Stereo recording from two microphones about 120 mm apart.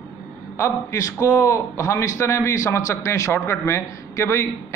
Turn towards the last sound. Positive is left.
turn(degrees=20)  # may be behind; listen again after turning